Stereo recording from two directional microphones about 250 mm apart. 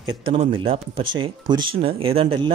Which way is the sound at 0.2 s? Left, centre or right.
Right.